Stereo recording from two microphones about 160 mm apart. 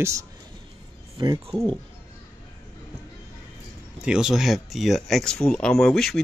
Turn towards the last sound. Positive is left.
turn(degrees=5)  # may be behind; listen again after turning